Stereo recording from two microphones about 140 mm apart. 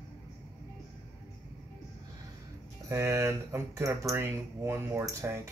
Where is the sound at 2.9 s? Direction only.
15° right (ahead or behind).